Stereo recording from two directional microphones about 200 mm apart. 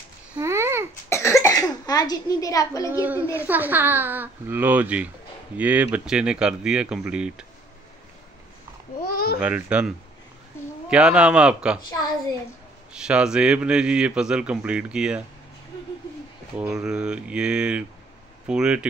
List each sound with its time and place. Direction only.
0.4 s babbling: 15° right (ahead or behind)
1.0 s cough: 15° left (ahead or behind)
3.4 s a man's voice: 10° right (ahead or behind)
9.1 s babbling: 50° left (ahead or behind)
9.4 s a man's voice: 5° right (ahead or behind)
12.9 s a man's voice: 5° right (ahead or behind)
16.5 s a man's voice: 5° right (ahead or behind)